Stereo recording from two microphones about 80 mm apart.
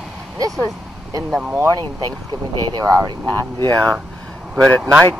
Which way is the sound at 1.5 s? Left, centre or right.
Right.